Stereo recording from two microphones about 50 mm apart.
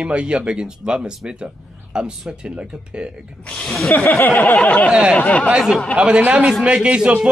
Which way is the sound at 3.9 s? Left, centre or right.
Left.